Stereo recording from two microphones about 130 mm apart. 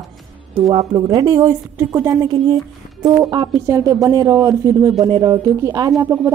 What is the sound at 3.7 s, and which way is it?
Speech, 25° right (ahead or behind).